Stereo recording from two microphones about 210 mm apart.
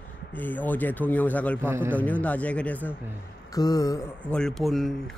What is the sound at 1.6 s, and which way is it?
Speech, 10° right (ahead or behind).